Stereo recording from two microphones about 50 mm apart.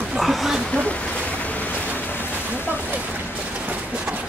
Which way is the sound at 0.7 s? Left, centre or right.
Left.